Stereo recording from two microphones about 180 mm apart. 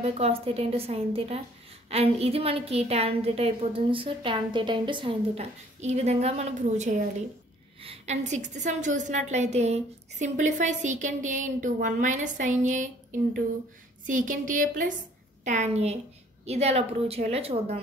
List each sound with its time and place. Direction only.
0.0 s a woman's voice: 35° right (ahead or behind)